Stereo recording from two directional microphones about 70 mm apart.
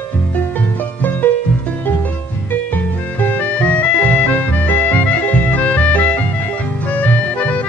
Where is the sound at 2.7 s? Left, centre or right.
Left.